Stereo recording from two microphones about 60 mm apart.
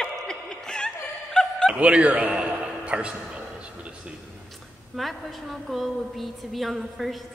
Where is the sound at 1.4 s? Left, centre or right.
Centre.